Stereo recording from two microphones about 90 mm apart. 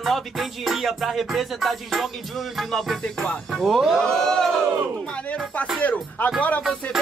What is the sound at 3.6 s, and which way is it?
Music, 5° right (ahead or behind).